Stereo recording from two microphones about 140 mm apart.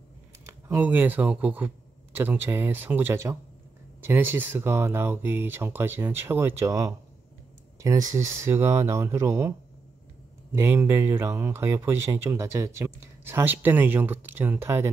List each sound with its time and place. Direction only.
0.5 s speech: 15° right (ahead or behind)
10.5 s speech: 15° right (ahead or behind)